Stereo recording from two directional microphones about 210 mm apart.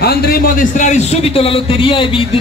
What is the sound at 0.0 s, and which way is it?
A man's voice, 50° left (ahead or behind).